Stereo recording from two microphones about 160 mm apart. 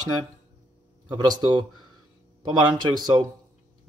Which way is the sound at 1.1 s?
25° right (ahead or behind).